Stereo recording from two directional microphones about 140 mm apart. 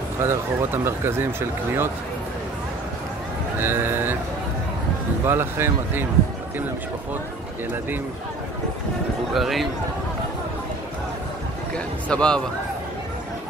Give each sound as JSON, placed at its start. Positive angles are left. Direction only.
{"t": 0.2, "sound": "speech", "side_deg": -20}
{"t": 3.5, "sound": "speech", "side_deg": -15}
{"t": 5.2, "sound": "speech", "side_deg": -15}
{"t": 9.3, "sound": "a man's voice", "side_deg": 0}
{"t": 11.7, "sound": "speech", "side_deg": 5}